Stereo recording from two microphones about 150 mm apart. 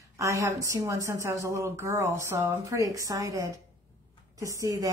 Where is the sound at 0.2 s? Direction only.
20° right (ahead or behind).